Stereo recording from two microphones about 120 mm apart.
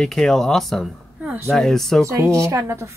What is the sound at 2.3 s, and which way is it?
Speech, 25° right (ahead or behind).